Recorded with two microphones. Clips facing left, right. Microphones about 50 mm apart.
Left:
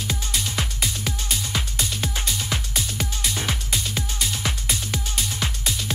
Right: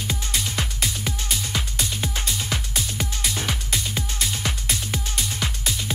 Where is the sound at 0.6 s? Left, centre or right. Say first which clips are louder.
Even; centre.